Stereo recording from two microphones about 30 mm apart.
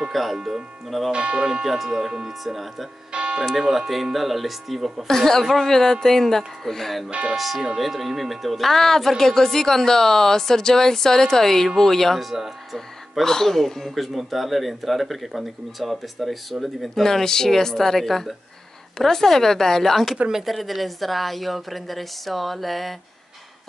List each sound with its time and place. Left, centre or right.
0.1 s speech: centre
1.1 s speech: right
1.6 s speech: centre
3.1 s tick-tock: right
3.5 s speech: centre
5.0 s a woman's voice: centre
7.1 s speech: right
7.3 s speech: centre
8.6 s a woman's voice: centre
12.2 s speech: centre
13.2 s a woman's voice: centre
13.9 s speech: centre
16.9 s a woman's voice: centre
20.4 s speech: centre